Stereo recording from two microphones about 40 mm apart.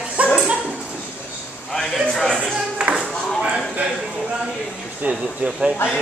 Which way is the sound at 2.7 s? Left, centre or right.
Right.